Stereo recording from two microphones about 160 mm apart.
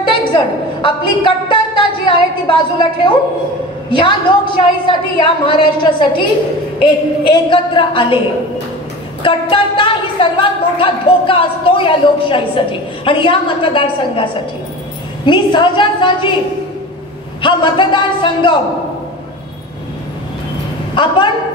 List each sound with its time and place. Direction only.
0.0 s a sound: 30° left (ahead or behind)
0.8 s a woman's voice: 30° left (ahead or behind)
9.2 s a man's voice: 30° left (ahead or behind)
17.4 s a man's voice: 30° left (ahead or behind)
20.9 s speech: 30° left (ahead or behind)